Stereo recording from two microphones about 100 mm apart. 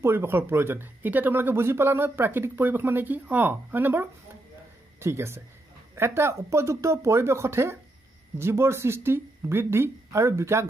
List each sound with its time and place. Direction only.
0.0 s speech: 25° right (ahead or behind)